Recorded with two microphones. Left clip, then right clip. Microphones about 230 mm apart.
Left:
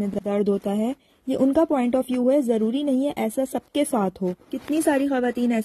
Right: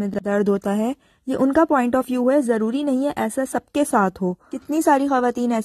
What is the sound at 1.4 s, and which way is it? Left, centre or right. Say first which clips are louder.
Speech: right 3 dB; right.